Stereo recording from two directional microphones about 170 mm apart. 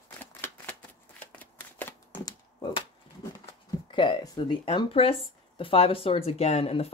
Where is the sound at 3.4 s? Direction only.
30° left (ahead or behind).